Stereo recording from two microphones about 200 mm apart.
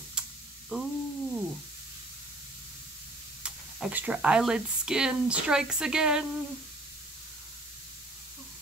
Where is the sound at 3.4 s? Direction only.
5° right (ahead or behind).